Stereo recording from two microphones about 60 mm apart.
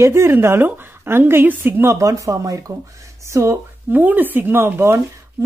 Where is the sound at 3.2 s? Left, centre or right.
Right.